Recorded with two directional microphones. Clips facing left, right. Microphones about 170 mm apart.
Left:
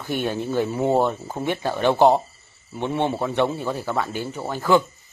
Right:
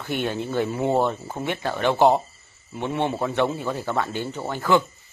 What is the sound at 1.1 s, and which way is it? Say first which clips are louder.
Speech: left 2 dB; 15° left (ahead or behind).